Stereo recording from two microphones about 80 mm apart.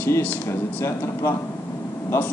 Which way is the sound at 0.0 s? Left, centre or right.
Left.